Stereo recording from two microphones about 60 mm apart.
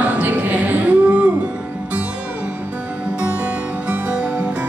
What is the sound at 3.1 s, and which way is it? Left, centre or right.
Music, centre.